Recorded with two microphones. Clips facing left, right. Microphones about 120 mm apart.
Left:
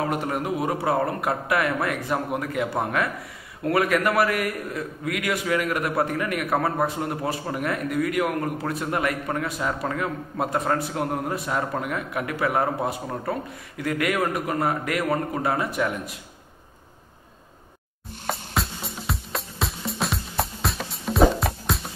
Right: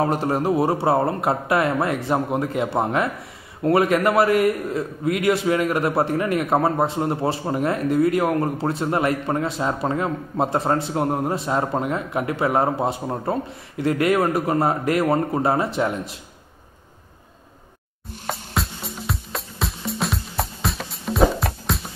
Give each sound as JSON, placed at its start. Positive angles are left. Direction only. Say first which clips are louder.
{"t": 0.0, "sound": "a man's voice", "louder": "right 5 dB", "side_deg": -35}
{"t": 18.2, "sound": "music", "louder": "right 1 dB", "side_deg": 0}